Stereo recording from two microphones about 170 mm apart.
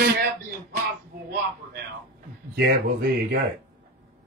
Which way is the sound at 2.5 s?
65° right (ahead or behind).